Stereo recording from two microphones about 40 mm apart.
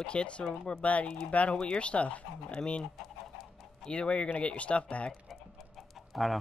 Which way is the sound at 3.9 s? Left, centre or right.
Left.